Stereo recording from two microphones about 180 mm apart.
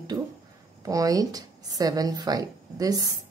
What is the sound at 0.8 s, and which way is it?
Speech, 20° right (ahead or behind).